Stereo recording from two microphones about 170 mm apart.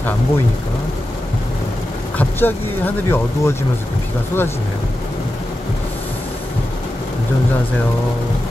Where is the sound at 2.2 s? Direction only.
10° left (ahead or behind).